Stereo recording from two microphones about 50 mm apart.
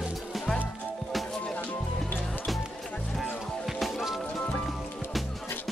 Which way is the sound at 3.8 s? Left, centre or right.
Centre.